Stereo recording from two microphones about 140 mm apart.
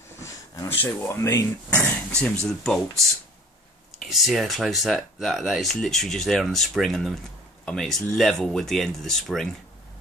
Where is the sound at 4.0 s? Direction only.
Centre (ahead or behind).